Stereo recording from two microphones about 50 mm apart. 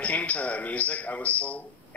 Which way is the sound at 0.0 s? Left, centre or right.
Left.